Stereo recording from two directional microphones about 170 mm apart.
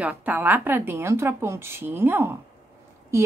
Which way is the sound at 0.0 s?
10° right (ahead or behind).